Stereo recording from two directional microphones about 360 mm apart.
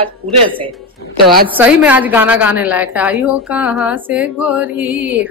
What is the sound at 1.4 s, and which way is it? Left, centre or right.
A woman's voice, centre.